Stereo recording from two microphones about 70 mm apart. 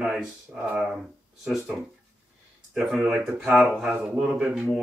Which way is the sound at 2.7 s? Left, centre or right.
Centre.